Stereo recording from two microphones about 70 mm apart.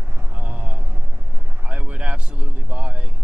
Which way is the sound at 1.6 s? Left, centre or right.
Centre.